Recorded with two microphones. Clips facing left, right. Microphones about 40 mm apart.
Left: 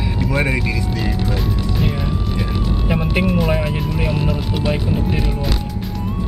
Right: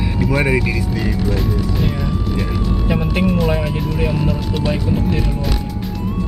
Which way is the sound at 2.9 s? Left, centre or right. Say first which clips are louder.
Even; centre.